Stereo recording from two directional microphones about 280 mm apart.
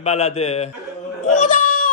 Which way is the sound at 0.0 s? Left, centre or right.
Left.